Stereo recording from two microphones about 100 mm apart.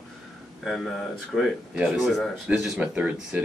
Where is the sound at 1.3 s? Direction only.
Centre (ahead or behind).